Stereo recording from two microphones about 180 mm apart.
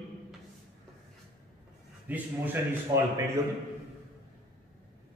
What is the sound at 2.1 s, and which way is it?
Speech, 10° right (ahead or behind).